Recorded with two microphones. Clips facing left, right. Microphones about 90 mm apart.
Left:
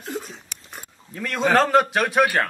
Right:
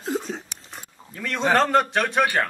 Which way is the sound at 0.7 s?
Centre (ahead or behind).